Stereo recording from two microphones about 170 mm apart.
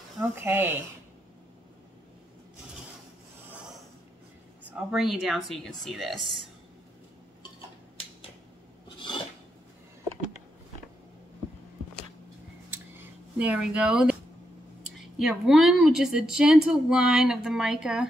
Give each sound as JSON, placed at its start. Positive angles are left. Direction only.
{"t": 0.4, "sound": "speech", "side_deg": -15}
{"t": 4.6, "sound": "a woman's voice", "side_deg": -5}
{"t": 8.8, "sound": "filing", "side_deg": 30}
{"t": 12.7, "sound": "a sound", "side_deg": -10}
{"t": 15.1, "sound": "a woman's voice", "side_deg": 0}